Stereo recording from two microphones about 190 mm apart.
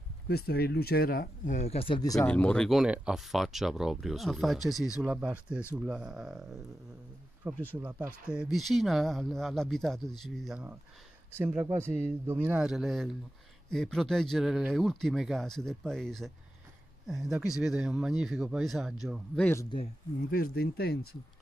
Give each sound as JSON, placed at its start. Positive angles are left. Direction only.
{"t": 0.3, "sound": "speech", "side_deg": 55}
{"t": 2.1, "sound": "speech", "side_deg": 5}
{"t": 7.7, "sound": "speech", "side_deg": -10}
{"t": 20.2, "sound": "speech", "side_deg": 50}